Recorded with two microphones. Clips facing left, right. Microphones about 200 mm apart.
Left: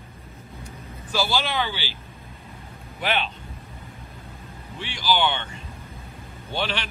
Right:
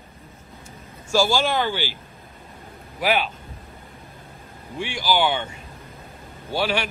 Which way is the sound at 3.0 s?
10° right (ahead or behind).